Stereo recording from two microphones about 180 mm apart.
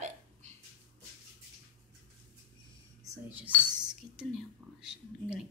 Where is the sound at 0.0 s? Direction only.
40° right (ahead or behind).